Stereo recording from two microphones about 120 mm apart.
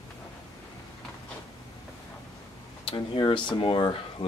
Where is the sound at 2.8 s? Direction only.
40° left (ahead or behind).